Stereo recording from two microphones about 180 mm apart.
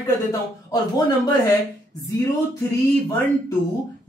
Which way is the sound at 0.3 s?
20° left (ahead or behind).